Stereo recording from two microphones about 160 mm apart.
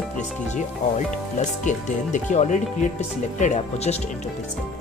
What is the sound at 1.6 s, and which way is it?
Speech, 50° left (ahead or behind).